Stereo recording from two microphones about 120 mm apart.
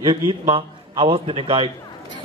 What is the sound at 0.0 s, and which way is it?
A man's voice, 40° right (ahead or behind).